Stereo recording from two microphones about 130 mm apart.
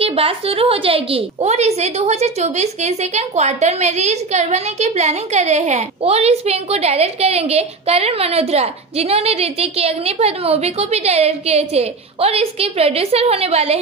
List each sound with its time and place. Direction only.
0.0 s a woman's voice: 45° right (ahead or behind)